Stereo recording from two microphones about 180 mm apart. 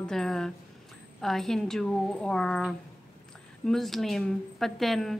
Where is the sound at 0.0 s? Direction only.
5° left (ahead or behind).